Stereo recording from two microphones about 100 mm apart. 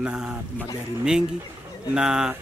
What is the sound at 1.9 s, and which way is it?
Speech, 5° right (ahead or behind).